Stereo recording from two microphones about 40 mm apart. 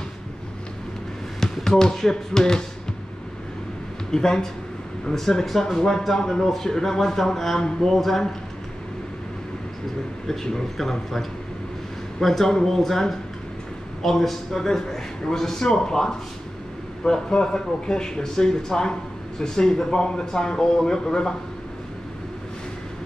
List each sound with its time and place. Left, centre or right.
1.4 s speech: centre
4.1 s speech: centre
10.2 s speech: centre